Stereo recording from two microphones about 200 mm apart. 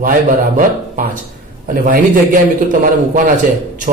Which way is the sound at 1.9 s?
45° right (ahead or behind).